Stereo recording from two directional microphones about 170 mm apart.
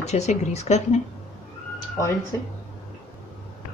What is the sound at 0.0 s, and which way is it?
Speech, 40° left (ahead or behind).